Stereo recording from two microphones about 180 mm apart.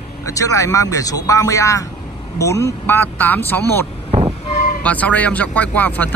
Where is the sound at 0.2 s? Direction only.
15° left (ahead or behind).